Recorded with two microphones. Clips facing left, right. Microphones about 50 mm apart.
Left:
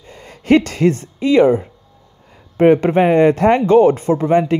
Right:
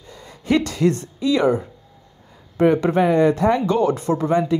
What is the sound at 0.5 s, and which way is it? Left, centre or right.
Speech, left.